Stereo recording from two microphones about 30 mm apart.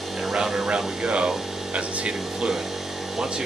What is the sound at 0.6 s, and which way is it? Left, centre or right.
Speech, right.